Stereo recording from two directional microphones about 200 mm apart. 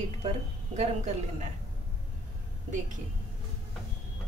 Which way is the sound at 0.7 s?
35° right (ahead or behind).